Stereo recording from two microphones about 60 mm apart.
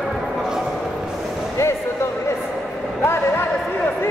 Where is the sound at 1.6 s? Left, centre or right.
Left.